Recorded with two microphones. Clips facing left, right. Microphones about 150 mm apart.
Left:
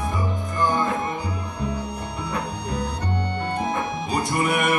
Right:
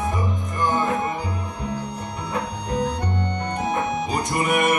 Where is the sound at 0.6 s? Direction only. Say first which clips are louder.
Even; 20° right (ahead or behind).